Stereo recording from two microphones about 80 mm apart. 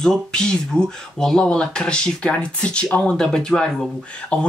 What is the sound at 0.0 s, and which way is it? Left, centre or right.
Speech, centre.